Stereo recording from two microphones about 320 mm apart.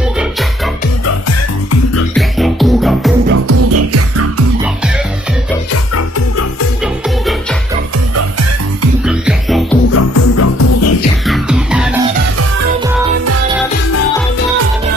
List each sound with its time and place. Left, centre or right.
2.1 s music: centre
3.3 s music: right
9.0 s music: centre
9.9 s music: left
11.2 s music: centre